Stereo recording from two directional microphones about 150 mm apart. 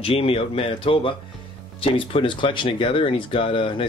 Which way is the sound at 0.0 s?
40° left (ahead or behind).